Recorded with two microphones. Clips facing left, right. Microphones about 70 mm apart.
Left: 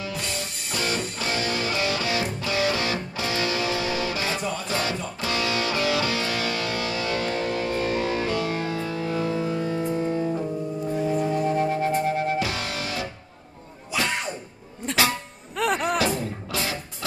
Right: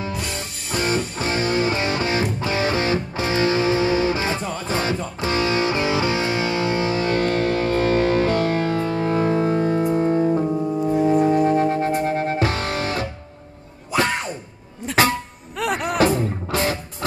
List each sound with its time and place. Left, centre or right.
0.7 s music: right
15.5 s music: centre
16.0 s music: right